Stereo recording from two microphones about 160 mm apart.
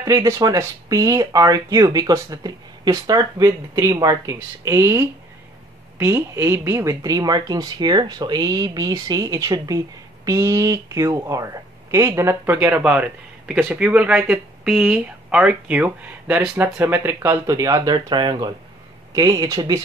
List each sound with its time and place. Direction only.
0.0 s a woman's voice: 20° right (ahead or behind)